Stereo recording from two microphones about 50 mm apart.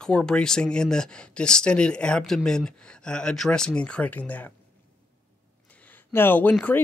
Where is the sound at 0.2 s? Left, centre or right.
Centre.